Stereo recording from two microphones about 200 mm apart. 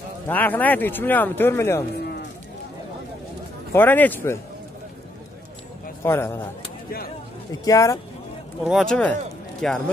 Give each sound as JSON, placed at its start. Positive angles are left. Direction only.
{"t": 0.3, "sound": "speech", "side_deg": 10}
{"t": 3.7, "sound": "speech", "side_deg": 10}
{"t": 6.0, "sound": "speech", "side_deg": 10}
{"t": 7.6, "sound": "speech", "side_deg": 15}
{"t": 8.6, "sound": "speech", "side_deg": 0}